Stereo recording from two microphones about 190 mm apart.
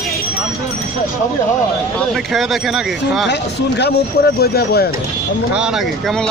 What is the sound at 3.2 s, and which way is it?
Speech, 65° left (ahead or behind).